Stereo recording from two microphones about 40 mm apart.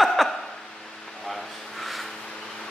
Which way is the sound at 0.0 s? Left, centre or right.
Centre.